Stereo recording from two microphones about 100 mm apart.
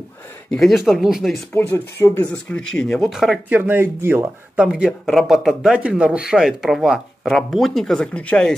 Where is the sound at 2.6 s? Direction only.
5° left (ahead or behind).